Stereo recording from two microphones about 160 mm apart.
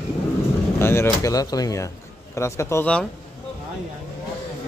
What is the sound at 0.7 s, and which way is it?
Speech, 15° left (ahead or behind).